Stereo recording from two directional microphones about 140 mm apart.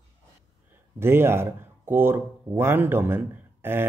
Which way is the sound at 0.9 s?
15° right (ahead or behind).